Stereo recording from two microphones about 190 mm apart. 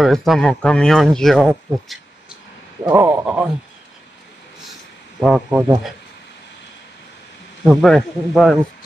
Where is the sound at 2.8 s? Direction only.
15° right (ahead or behind).